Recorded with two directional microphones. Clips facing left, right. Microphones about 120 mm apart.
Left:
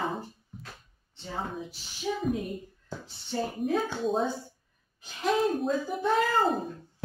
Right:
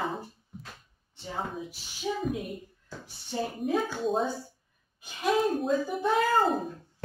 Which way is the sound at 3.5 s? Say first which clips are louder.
Even; centre (ahead or behind).